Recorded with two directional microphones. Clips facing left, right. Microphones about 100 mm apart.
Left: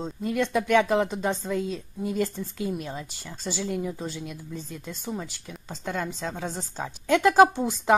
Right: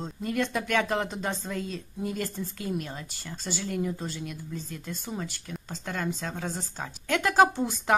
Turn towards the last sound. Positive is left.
turn(degrees=15)  # may be behind; listen again after turning